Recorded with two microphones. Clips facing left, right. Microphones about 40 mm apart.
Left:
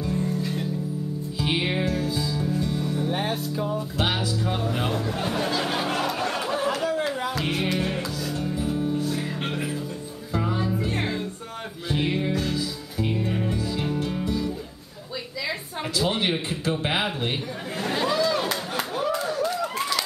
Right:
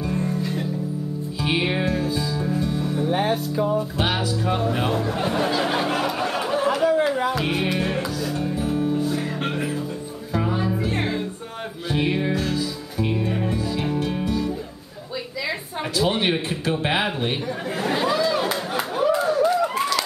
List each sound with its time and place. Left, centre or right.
0.1 s music: centre
0.4 s music: centre
4.5 s a sound: centre
8.4 s music: centre
13.9 s music: right
16.0 s speech: centre
17.7 s a sound: centre